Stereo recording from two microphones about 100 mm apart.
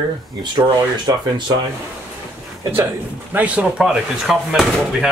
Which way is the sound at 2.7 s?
20° right (ahead or behind).